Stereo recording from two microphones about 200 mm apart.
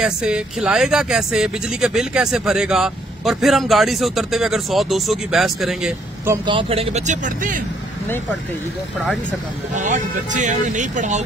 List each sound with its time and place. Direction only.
0.0 s speech: 5° right (ahead or behind)
6.3 s speech: 25° right (ahead or behind); by 7.6 s 40° right (ahead or behind)
9.8 s speech: 40° right (ahead or behind)